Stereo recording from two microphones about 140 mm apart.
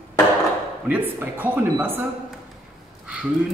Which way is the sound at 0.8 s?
15° right (ahead or behind).